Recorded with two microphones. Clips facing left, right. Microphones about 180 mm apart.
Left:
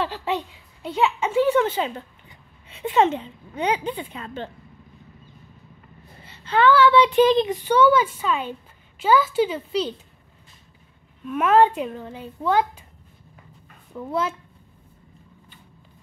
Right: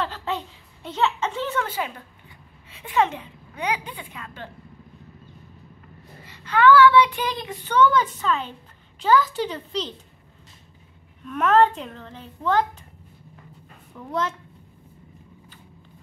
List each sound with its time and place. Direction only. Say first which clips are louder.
0.0 s a sound: left 3 dB; 15° left (ahead or behind)
0.8 s a child's voice: left 2 dB; 10° left (ahead or behind)
1.7 s speech: left 4 dB; 25° left (ahead or behind)
6.2 s a child's voice: right 1 dB; 25° left (ahead or behind); by 9.8 s 5° left (ahead or behind)
11.2 s a child's voice: left 1 dB; 10° left (ahead or behind)
13.9 s a child's voice: left 2 dB; 10° left (ahead or behind)